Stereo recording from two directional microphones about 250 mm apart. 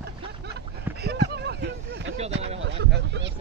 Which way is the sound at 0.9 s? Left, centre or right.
Right.